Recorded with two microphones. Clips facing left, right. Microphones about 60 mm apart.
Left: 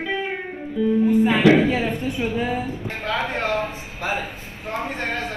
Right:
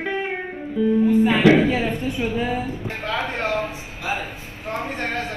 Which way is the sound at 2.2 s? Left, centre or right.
Left.